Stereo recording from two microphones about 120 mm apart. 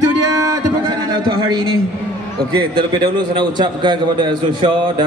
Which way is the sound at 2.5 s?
40° right (ahead or behind).